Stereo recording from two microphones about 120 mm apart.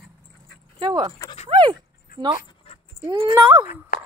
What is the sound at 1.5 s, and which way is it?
Dog, 40° right (ahead or behind).